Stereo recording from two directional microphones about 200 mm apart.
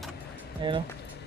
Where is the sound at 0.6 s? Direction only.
25° right (ahead or behind).